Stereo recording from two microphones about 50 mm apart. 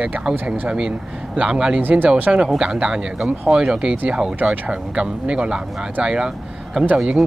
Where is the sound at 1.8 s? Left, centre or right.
Right.